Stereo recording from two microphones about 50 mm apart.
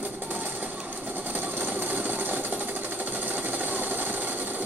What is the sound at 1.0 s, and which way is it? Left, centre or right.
Sewing machine, right.